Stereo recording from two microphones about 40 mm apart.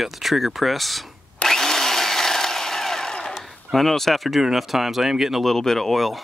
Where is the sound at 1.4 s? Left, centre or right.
Centre.